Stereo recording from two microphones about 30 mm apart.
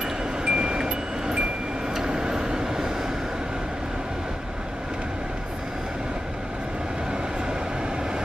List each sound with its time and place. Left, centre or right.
0.5 s music: right
2.0 s vehicle: right